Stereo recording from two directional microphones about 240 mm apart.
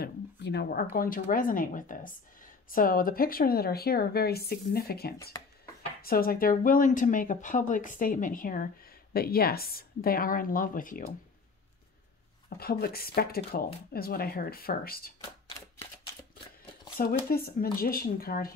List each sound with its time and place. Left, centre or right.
0.0 s a sound: left
0.9 s a woman's voice: left
12.5 s a woman's voice: left
17.3 s a woman's voice: left